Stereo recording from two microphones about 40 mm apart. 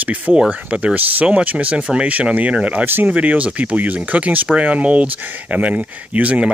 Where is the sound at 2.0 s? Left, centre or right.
Right.